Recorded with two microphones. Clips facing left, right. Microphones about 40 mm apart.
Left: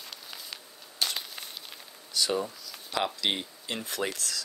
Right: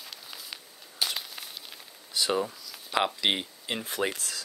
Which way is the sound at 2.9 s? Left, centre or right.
Centre.